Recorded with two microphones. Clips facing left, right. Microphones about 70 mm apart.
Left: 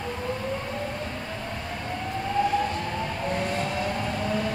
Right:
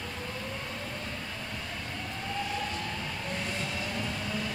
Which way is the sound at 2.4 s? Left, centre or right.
Left.